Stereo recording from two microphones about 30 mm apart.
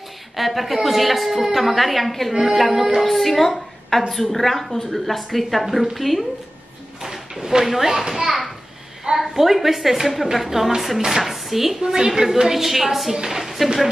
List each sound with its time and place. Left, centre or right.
0.4 s a woman's voice: centre
7.0 s a sound: centre
7.6 s a woman's voice: centre
9.2 s a woman's voice: centre
11.8 s a woman's voice: right
12.1 s a woman's voice: centre
13.3 s a sound: centre